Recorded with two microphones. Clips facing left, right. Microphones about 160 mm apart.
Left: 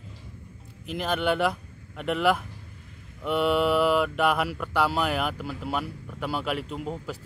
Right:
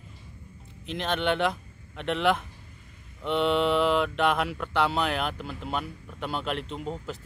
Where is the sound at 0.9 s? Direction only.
5° left (ahead or behind).